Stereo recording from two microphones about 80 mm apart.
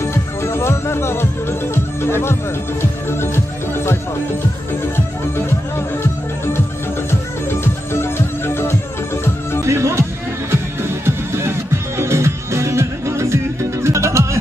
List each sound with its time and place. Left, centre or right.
0.0 s music: left
2.0 s speech: left
2.8 s music: left
7.6 s music: left
9.7 s speech: right
10.5 s music: right